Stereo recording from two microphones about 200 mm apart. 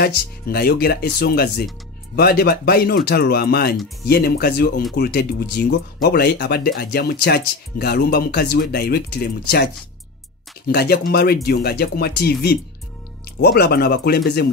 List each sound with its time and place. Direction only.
0.0 s speech: 50° left (ahead or behind)
10.7 s speech: 50° left (ahead or behind)